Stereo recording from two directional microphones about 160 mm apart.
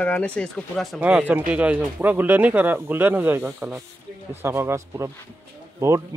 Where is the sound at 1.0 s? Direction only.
10° right (ahead or behind).